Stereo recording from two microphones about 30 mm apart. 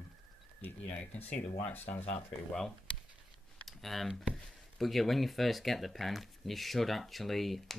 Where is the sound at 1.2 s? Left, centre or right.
Left.